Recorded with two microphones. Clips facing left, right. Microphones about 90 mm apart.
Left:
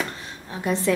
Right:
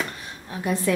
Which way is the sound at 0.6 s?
30° left (ahead or behind).